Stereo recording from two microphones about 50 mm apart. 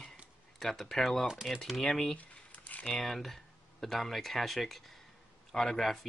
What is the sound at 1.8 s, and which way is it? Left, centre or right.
Speech, centre.